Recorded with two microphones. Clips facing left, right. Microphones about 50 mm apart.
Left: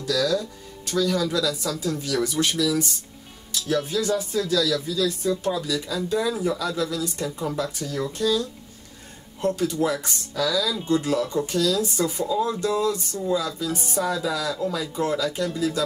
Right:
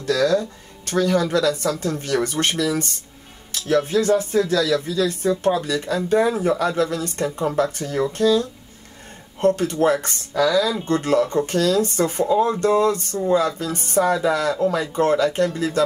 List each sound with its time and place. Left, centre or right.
0.0 s speech: right